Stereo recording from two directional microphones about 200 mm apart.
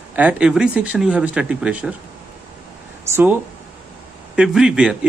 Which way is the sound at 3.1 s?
10° right (ahead or behind).